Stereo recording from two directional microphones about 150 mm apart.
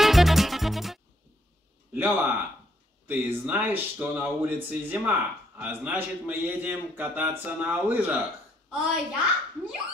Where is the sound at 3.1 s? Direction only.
10° right (ahead or behind).